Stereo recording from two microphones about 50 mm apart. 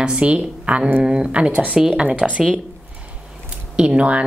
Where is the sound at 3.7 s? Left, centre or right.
Right.